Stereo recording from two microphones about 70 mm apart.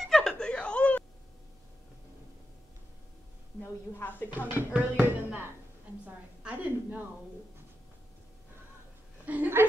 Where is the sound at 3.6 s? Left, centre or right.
Left.